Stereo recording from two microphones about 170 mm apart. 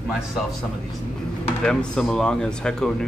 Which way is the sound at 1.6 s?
5° left (ahead or behind).